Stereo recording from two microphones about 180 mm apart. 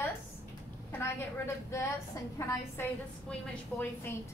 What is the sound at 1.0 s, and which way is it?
A woman's voice, 15° left (ahead or behind).